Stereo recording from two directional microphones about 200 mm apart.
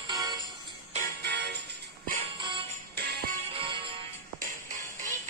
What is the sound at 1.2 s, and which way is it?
Music, 60° right (ahead or behind).